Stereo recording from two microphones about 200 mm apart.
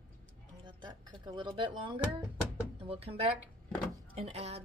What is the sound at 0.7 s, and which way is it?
A woman's voice, 20° right (ahead or behind).